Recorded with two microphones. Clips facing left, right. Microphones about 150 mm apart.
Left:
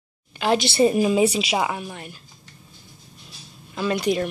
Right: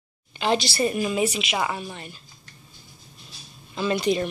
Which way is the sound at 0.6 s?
20° left (ahead or behind).